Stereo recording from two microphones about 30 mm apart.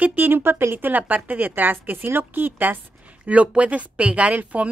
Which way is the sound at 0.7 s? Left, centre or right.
Right.